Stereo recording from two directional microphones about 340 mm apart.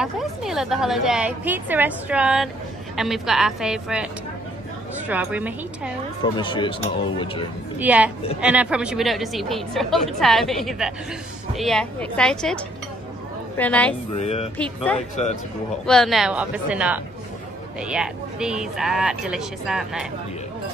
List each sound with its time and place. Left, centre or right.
0.0 s a woman's voice: centre
6.3 s speech: centre
7.8 s a woman's voice: centre
13.6 s a woman's voice: centre
14.1 s speech: centre
14.6 s a woman's voice: centre
15.0 s speech: centre
15.8 s a woman's voice: centre